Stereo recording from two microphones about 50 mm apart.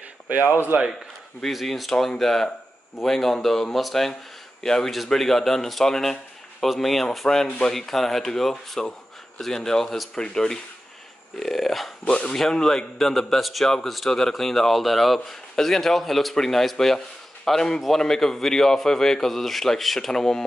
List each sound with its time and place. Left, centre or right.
0.7 s speech: right
1.4 s a man's voice: centre
12.0 s a man's voice: centre